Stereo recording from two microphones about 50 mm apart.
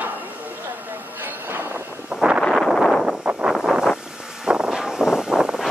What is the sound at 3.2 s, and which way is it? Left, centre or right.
Wind, right.